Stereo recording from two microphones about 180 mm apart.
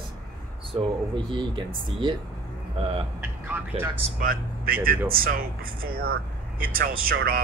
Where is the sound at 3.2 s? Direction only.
10° right (ahead or behind).